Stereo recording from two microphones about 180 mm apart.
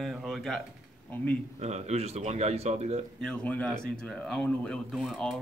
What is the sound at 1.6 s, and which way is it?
Speech, 40° right (ahead or behind).